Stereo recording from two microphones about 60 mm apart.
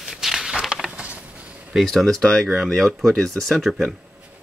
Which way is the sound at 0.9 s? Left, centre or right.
Right.